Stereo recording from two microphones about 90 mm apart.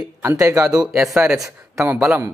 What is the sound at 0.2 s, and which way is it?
Speech, 35° right (ahead or behind).